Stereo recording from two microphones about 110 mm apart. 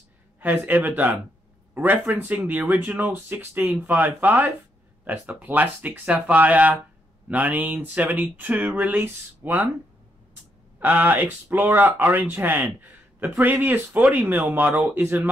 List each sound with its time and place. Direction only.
0.4 s speech: 15° right (ahead or behind)
10.8 s speech: 15° right (ahead or behind)